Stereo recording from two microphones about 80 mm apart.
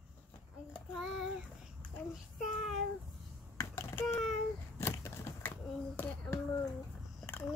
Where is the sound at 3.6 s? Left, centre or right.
Left.